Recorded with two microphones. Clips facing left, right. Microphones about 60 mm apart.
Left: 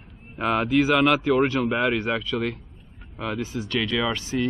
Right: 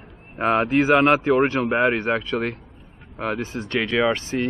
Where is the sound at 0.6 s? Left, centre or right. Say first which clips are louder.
Right 2 dB; right.